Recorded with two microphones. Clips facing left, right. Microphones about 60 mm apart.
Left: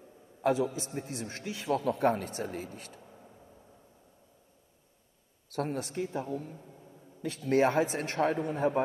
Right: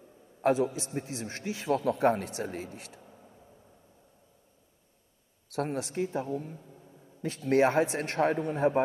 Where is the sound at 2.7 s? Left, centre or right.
Left.